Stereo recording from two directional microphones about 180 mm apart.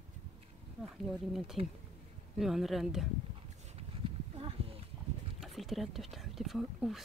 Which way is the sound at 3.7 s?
30° right (ahead or behind).